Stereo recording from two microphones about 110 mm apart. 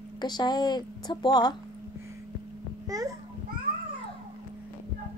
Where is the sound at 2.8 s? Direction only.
35° right (ahead or behind).